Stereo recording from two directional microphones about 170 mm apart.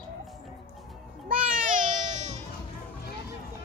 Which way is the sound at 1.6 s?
50° right (ahead or behind).